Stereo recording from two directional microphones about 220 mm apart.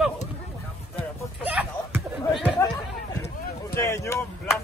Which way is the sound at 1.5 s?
5° right (ahead or behind).